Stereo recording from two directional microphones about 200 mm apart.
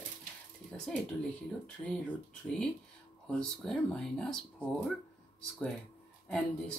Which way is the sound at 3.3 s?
5° left (ahead or behind).